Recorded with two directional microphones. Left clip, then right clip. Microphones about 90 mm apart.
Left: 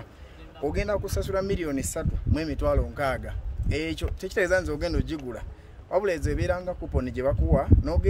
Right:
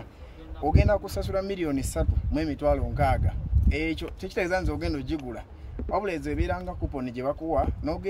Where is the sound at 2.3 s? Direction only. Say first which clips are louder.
Right 1 dB; 55° left (ahead or behind).